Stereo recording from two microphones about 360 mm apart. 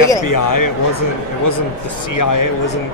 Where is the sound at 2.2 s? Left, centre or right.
Left.